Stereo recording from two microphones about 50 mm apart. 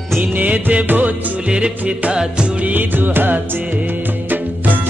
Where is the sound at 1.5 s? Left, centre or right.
Right.